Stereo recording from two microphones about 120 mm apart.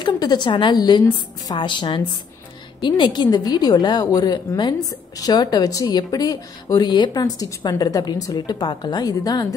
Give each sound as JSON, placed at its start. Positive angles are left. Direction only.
{"t": 0.0, "sound": "a woman's voice", "side_deg": 35}